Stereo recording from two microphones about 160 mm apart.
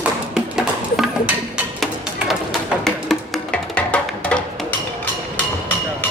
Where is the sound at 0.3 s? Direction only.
5° right (ahead or behind).